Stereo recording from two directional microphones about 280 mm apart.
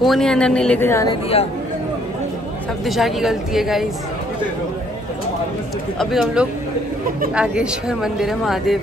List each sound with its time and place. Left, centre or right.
0.0 s speech: centre
1.3 s speech: left
2.9 s speech: centre
5.9 s speech: centre